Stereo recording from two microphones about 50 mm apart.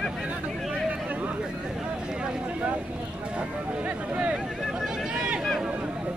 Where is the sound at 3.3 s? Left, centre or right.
Right.